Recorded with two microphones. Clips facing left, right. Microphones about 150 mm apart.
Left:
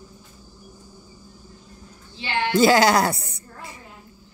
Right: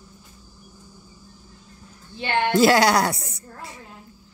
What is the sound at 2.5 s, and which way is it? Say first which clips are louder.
Music: left 1 dB; centre (ahead or behind).